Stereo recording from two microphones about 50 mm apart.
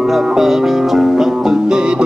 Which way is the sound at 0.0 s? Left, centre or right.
Centre.